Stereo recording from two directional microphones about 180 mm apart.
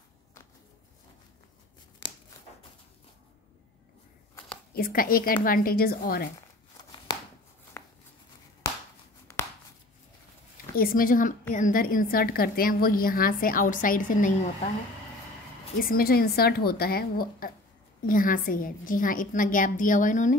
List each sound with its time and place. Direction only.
4.7 s a woman's voice: 55° left (ahead or behind)
7.1 s a sound: 20° left (ahead or behind)
10.8 s a woman's voice: 50° left (ahead or behind)
15.8 s a woman's voice: 55° left (ahead or behind)